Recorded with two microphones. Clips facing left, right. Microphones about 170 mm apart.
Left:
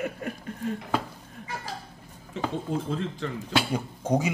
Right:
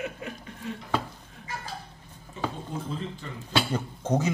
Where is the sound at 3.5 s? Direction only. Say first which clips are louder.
Right 1 dB; 10° left (ahead or behind).